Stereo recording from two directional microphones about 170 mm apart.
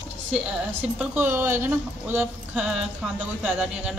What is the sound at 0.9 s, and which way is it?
Speech, 10° right (ahead or behind).